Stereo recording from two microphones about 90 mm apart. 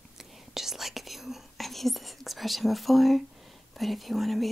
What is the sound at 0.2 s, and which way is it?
Whispering, 5° right (ahead or behind).